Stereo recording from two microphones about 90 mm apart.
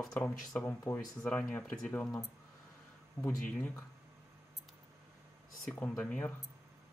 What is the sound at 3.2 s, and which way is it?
Speech, 30° left (ahead or behind).